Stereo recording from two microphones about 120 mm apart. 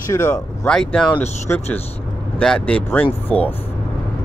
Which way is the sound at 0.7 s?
5° left (ahead or behind).